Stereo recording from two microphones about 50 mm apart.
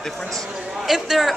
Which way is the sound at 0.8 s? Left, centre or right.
Centre.